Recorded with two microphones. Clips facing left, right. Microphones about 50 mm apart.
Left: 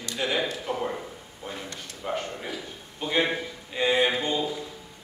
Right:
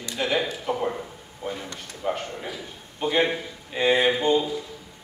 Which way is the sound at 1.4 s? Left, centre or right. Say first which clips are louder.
Right 5 dB; right.